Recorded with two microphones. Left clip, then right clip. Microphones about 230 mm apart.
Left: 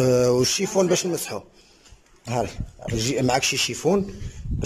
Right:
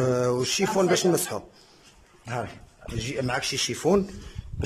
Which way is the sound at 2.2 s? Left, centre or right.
Centre.